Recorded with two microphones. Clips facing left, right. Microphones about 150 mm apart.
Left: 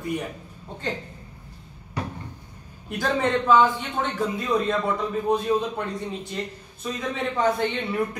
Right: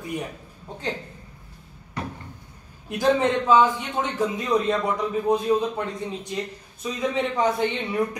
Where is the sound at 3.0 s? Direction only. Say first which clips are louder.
Right 3 dB; 15° right (ahead or behind).